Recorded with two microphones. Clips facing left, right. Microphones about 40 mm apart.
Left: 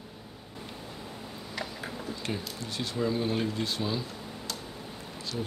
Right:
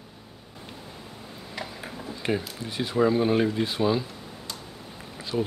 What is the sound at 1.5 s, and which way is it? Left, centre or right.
Speech, centre.